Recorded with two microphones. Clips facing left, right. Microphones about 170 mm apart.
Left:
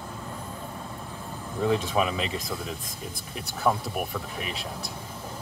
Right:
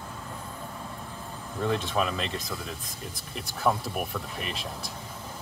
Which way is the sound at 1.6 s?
10° left (ahead or behind).